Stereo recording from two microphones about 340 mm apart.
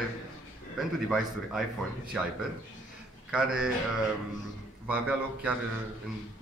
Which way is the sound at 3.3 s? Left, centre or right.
Centre.